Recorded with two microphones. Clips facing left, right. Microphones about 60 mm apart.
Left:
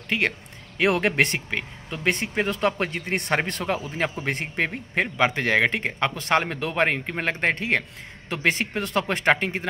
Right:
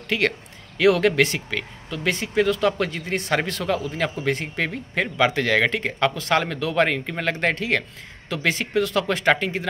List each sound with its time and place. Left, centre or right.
0.7 s speech: left
2.0 s speech: left